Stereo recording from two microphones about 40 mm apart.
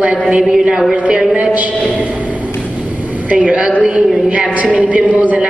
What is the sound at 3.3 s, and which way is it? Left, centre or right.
A woman's voice, right.